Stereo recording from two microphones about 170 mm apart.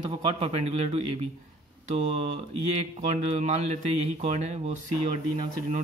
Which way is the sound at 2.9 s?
40° right (ahead or behind).